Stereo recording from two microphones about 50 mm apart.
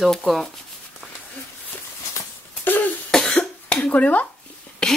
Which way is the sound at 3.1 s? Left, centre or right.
Centre.